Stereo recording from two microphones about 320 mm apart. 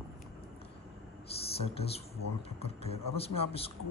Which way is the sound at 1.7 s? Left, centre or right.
Centre.